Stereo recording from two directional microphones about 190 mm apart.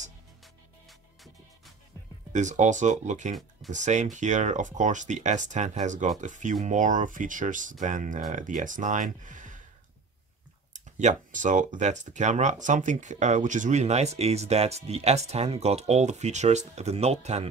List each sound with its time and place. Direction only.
2.3 s speech: 40° right (ahead or behind)
10.7 s speech: 40° right (ahead or behind)